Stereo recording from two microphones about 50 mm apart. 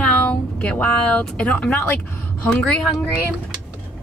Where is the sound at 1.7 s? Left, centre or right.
Left.